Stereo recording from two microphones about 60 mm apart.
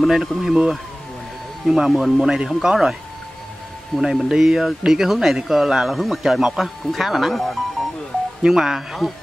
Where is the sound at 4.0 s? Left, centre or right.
Centre.